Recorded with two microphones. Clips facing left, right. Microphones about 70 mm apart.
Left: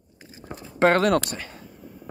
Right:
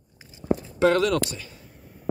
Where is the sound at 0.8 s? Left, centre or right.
Left.